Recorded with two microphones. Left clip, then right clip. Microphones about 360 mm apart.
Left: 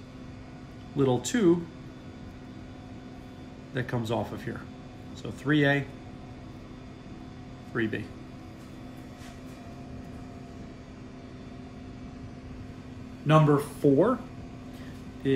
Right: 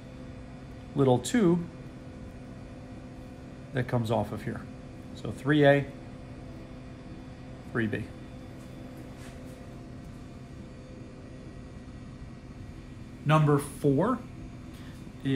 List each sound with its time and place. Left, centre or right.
0.9 s speech: centre
3.7 s speech: centre
7.7 s speech: centre
13.3 s speech: centre